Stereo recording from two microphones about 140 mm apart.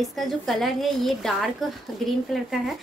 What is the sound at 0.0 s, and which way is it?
A woman's voice, centre (ahead or behind).